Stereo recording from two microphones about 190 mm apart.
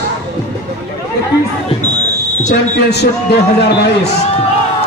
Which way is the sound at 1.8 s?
35° left (ahead or behind).